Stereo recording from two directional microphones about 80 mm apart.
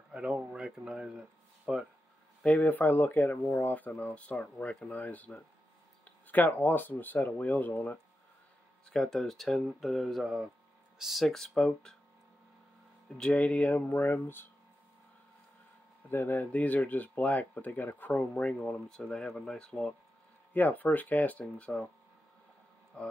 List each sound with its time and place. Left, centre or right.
0.1 s speech: centre
2.4 s speech: centre
8.9 s speech: centre
13.2 s speech: centre
16.1 s speech: left; by 19.9 s centre
20.5 s speech: left
23.0 s speech: centre